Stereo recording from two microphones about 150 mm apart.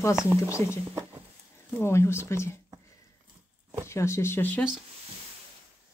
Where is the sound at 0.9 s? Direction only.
20° right (ahead or behind).